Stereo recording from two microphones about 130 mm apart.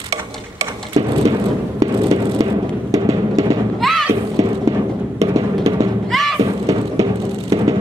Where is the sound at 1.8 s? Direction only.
25° right (ahead or behind).